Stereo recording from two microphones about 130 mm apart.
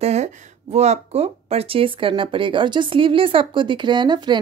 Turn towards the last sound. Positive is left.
turn(degrees=-35)  # may be behind; listen again after turning